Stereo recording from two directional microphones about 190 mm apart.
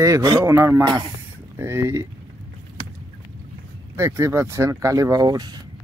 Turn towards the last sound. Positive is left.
turn(degrees=-20)  # may be behind; listen again after turning